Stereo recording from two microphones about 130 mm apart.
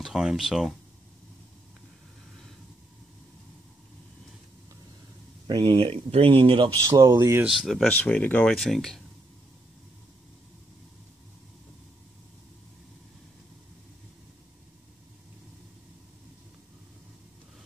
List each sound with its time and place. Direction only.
0.0 s speech: 5° right (ahead or behind)
5.5 s speech: 40° right (ahead or behind)
7.4 s speech: centre (ahead or behind)
7.9 s speech: 10° left (ahead or behind)